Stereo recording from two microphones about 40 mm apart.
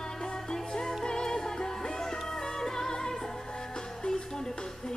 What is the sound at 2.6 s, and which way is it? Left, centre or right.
Music, centre.